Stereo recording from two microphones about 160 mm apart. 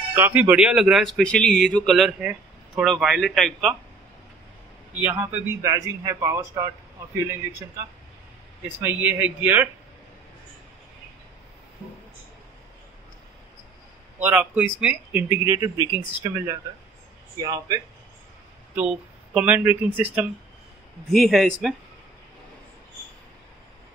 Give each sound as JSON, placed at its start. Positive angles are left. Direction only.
{"t": 0.1, "sound": "speech", "side_deg": -10}
{"t": 5.0, "sound": "a man's voice", "side_deg": -20}
{"t": 8.8, "sound": "speech", "side_deg": -10}
{"t": 14.2, "sound": "speech", "side_deg": -10}
{"t": 15.4, "sound": "a man's voice", "side_deg": -20}
{"t": 18.8, "sound": "speech", "side_deg": -5}
{"t": 21.1, "sound": "speech", "side_deg": 0}